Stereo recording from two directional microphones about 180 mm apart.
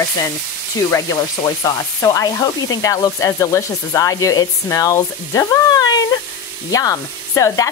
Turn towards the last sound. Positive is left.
turn(degrees=15)  # may be behind; listen again after turning